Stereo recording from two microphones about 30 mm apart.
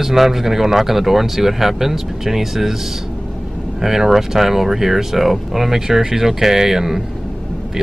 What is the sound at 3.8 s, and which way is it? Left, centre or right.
Speech, centre.